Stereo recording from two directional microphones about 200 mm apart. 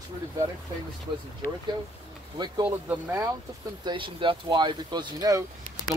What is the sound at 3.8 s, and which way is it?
Speech, 25° right (ahead or behind).